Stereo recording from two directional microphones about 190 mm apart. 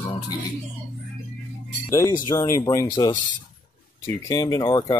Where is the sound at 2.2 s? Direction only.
15° left (ahead or behind).